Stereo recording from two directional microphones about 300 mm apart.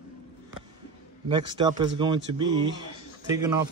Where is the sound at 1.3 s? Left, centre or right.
Centre.